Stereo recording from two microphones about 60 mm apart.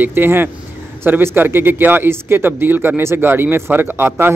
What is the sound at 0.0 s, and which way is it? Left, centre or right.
A man's voice, right.